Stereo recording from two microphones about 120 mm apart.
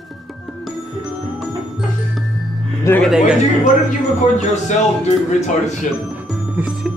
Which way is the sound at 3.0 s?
5° right (ahead or behind).